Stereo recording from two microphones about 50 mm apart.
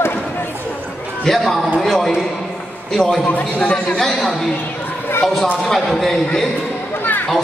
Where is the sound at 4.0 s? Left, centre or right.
Centre.